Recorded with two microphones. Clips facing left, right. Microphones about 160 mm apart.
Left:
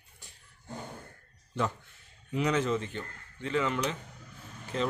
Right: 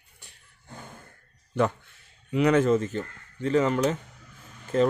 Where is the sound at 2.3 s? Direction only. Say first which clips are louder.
Right 8 dB; 60° right (ahead or behind).